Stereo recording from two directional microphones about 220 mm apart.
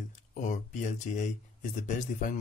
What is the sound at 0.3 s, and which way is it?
Speech, 35° left (ahead or behind).